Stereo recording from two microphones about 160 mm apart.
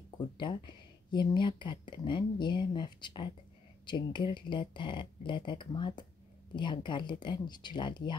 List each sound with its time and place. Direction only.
0.4 s speech: 30° left (ahead or behind)